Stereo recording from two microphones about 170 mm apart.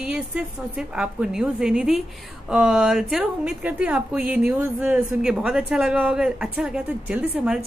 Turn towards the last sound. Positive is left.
turn(degrees=-5)  # may be behind; listen again after turning